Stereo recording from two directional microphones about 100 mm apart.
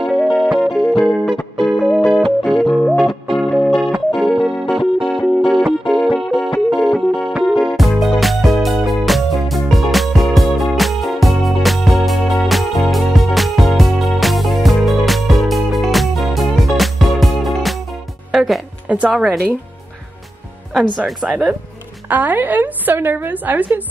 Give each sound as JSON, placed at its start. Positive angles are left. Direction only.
{"t": 0.0, "sound": "music", "side_deg": 0}
{"t": 21.0, "sound": "a woman's voice", "side_deg": -10}